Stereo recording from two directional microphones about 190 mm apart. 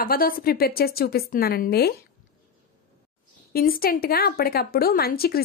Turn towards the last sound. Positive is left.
turn(degrees=55)  # may be behind; listen again after turning